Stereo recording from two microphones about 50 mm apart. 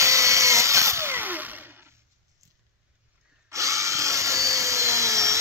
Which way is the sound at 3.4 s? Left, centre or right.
Right.